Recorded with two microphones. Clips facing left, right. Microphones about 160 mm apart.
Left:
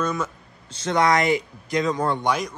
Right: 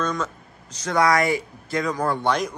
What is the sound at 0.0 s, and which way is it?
Speech, 10° left (ahead or behind).